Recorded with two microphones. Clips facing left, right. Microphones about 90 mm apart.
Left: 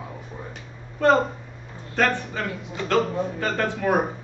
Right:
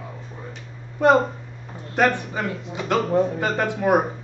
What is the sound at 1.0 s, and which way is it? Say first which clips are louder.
A man's voice: right 2 dB; 15° right (ahead or behind).